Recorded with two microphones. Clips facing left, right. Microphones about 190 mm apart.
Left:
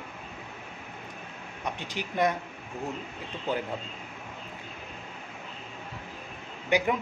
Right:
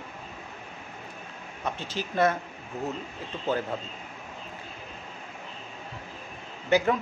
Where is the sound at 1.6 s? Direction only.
15° left (ahead or behind).